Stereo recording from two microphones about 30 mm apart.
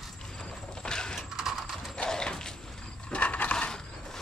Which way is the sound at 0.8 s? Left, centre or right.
Left.